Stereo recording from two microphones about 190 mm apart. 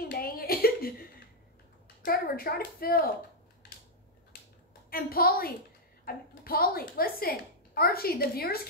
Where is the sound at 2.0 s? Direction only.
50° left (ahead or behind).